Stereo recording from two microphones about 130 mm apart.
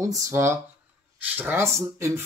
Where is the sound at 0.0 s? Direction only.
25° right (ahead or behind).